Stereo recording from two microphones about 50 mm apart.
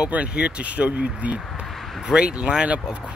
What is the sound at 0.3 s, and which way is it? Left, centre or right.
Speech, right.